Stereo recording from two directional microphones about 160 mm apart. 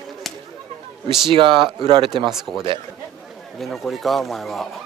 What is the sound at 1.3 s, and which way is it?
A man's voice, 30° right (ahead or behind).